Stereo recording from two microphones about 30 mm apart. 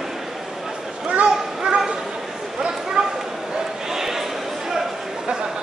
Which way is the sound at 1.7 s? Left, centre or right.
Right.